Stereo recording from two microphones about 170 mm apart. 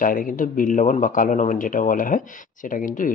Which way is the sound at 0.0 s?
55° left (ahead or behind).